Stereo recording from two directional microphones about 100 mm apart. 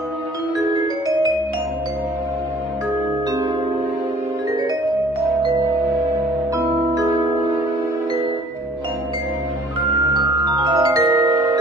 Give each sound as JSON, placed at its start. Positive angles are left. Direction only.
{"t": 6.5, "sound": "music", "side_deg": -35}
{"t": 10.1, "sound": "music", "side_deg": -45}